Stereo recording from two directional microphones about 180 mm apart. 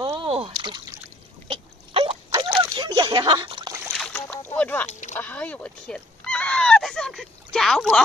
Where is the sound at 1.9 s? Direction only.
30° right (ahead or behind).